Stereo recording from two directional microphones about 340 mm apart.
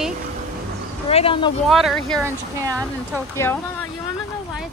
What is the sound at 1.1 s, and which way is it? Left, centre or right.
Speech, centre.